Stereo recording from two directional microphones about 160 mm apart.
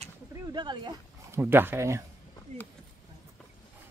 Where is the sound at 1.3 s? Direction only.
15° right (ahead or behind).